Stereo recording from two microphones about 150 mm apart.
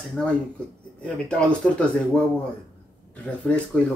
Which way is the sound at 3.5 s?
10° left (ahead or behind).